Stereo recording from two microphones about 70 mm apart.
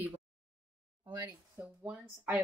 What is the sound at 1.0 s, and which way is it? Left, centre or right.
Speech, right.